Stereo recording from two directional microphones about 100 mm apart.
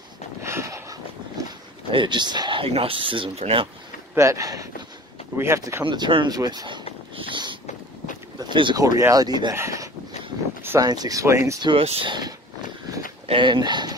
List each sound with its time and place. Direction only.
0.4 s a sound: 25° right (ahead or behind)
1.9 s speech: 55° right (ahead or behind)
2.6 s speech: 70° right (ahead or behind)
4.1 s speech: 30° right (ahead or behind)
5.9 s speech: 55° right (ahead or behind)
7.2 s vehicle: 55° right (ahead or behind)
8.4 s a sound: 50° right (ahead or behind)
8.7 s speech: 35° right (ahead or behind)
9.6 s speech: 30° right (ahead or behind)
11.8 s speech: 90° right
12.1 s speech: 45° right (ahead or behind)